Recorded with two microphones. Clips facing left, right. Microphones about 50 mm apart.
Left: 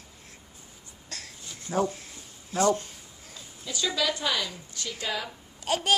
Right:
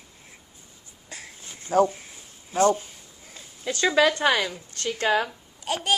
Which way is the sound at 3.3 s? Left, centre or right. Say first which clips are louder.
Right 6 dB; right.